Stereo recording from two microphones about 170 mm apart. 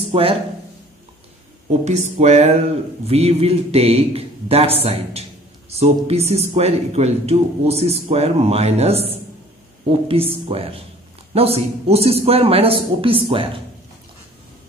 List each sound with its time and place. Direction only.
0.1 s speech: 35° right (ahead or behind)
1.9 s a man's voice: 40° right (ahead or behind)